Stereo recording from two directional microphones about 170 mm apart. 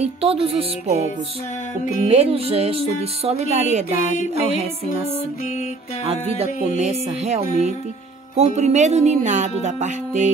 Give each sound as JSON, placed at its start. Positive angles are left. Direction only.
{"t": 0.0, "sound": "music", "side_deg": -35}
{"t": 2.0, "sound": "music", "side_deg": -35}
{"t": 6.0, "sound": "music", "side_deg": -35}
{"t": 8.4, "sound": "speech", "side_deg": -40}